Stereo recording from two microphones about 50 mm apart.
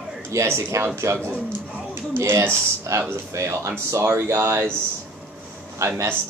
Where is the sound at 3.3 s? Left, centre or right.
Right.